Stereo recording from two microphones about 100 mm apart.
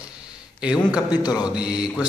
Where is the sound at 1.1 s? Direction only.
40° left (ahead or behind).